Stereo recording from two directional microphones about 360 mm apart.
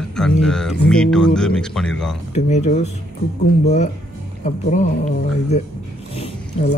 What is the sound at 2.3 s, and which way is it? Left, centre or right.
Music, centre.